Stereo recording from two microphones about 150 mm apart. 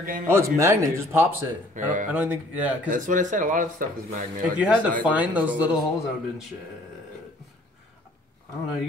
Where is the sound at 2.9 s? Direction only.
60° right (ahead or behind).